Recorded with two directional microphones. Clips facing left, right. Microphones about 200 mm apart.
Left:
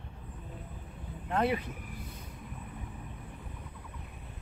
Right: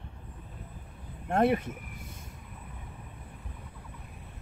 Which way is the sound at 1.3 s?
50° right (ahead or behind).